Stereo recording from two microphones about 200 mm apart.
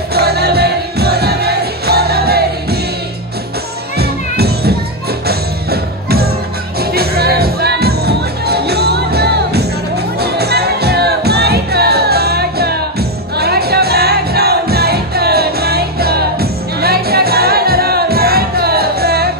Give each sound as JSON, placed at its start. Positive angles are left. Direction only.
{"t": 0.1, "sound": "music", "side_deg": -55}
{"t": 4.0, "sound": "music", "side_deg": -50}